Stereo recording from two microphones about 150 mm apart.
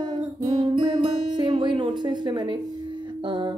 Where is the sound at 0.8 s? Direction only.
30° right (ahead or behind).